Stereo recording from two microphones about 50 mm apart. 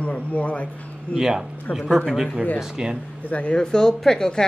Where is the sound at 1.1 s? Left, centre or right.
Centre.